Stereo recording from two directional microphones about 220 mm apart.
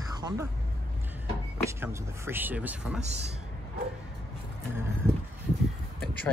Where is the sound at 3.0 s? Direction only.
30° right (ahead or behind).